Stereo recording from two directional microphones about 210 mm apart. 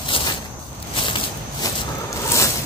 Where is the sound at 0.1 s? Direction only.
25° left (ahead or behind).